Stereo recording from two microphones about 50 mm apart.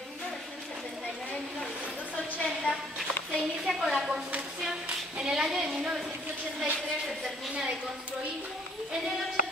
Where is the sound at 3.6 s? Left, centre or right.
Centre.